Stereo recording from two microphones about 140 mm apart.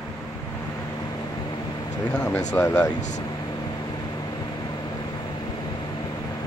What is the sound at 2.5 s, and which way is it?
Speech, 20° left (ahead or behind).